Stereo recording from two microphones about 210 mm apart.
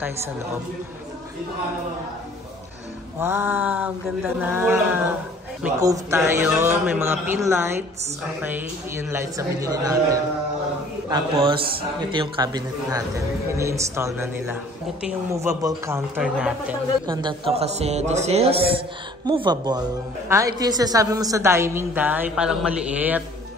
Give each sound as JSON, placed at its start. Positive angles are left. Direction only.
{"t": 3.2, "sound": "a man's voice", "side_deg": -10}
{"t": 5.8, "sound": "a man's voice", "side_deg": -15}
{"t": 17.0, "sound": "a man's voice", "side_deg": -20}